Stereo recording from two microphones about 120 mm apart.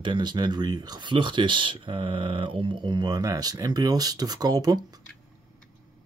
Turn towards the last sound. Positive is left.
turn(degrees=-35)  # may be behind; listen again after turning